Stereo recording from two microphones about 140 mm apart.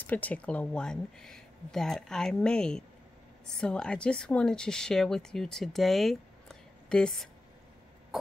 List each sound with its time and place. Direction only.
0.0 s a woman's voice: 10° left (ahead or behind)
8.1 s pulse: 5° right (ahead or behind)